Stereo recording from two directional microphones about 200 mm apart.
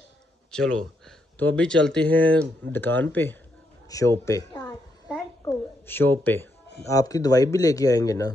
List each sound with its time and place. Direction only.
0.5 s a woman's voice: 5° left (ahead or behind)